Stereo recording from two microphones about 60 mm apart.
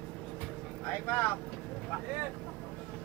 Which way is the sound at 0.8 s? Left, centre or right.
Left.